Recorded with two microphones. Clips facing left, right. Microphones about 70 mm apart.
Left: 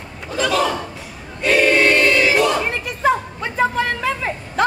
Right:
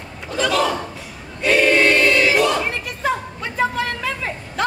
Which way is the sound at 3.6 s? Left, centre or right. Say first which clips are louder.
Left 2 dB; left.